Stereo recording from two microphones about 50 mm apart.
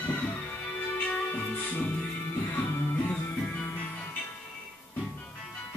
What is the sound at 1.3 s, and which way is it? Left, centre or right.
Music, left.